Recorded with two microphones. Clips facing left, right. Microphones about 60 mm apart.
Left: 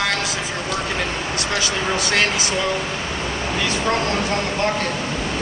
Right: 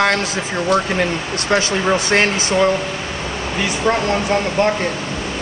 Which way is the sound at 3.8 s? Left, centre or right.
Right.